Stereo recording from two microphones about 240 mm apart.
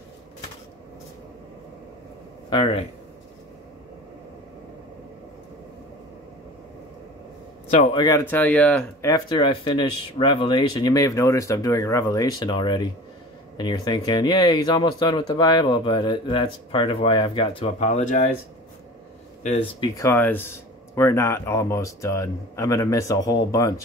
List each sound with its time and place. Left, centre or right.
2.5 s speech: left
7.9 s speech: centre
9.1 s speech: centre
19.4 s speech: left
20.0 s speech: centre